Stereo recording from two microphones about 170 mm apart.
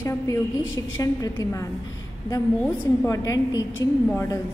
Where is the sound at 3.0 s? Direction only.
20° left (ahead or behind).